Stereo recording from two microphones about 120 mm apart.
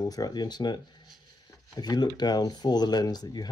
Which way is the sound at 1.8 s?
35° left (ahead or behind).